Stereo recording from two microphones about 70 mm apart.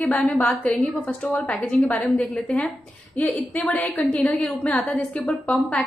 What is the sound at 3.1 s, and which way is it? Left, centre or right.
A woman's voice, left.